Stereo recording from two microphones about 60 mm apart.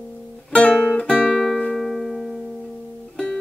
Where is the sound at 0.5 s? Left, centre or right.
Centre.